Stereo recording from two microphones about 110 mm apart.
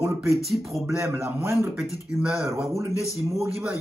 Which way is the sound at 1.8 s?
5° right (ahead or behind).